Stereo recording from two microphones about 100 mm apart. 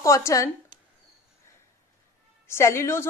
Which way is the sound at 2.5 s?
25° left (ahead or behind).